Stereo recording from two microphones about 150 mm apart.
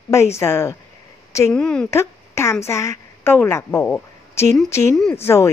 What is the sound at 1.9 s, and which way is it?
A woman's voice, 20° left (ahead or behind).